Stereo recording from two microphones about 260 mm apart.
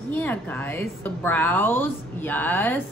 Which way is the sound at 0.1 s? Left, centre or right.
Centre.